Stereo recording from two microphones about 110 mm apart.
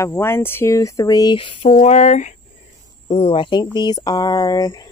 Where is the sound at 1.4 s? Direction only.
50° left (ahead or behind).